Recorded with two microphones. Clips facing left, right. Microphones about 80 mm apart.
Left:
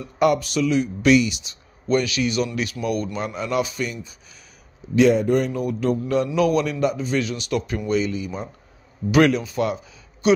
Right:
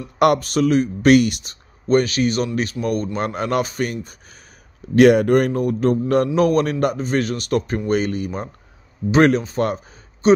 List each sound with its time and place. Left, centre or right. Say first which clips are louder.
0.4 s a man's voice: right 4 dB; right
3.2 s a man's voice: right 3 dB; right
4.9 s a man's voice: right 4 dB; right
9.1 s speech: right 2 dB; right